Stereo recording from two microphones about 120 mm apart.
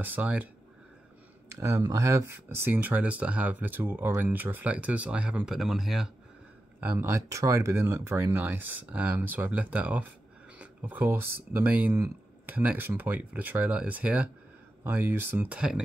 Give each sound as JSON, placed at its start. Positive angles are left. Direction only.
{"t": 0.0, "sound": "speech", "side_deg": -15}
{"t": 1.6, "sound": "speech", "side_deg": -25}
{"t": 6.8, "sound": "speech", "side_deg": -20}